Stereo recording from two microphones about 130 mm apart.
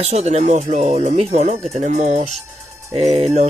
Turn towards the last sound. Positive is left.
turn(degrees=-55)  # may be behind; listen again after turning